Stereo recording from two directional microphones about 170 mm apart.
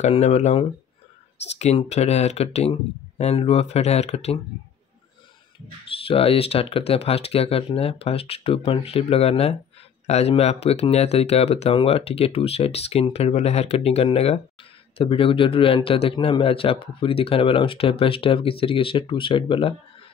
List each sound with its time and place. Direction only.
0.0 s speech: 40° left (ahead or behind)
6.0 s speech: 35° left (ahead or behind)